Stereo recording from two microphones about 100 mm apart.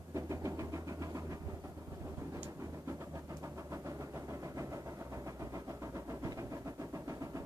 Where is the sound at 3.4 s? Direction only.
30° right (ahead or behind).